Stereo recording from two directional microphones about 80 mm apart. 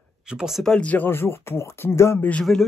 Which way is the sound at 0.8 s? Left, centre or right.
Left.